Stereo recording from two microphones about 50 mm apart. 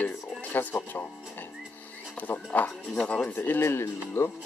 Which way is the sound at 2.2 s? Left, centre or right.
Left.